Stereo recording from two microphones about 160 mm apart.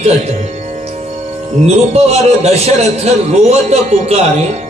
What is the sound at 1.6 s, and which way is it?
A man's voice, 40° right (ahead or behind).